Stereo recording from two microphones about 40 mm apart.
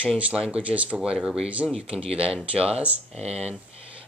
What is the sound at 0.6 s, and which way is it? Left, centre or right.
Speech, right.